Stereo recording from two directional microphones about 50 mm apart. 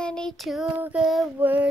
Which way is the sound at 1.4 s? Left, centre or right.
Right.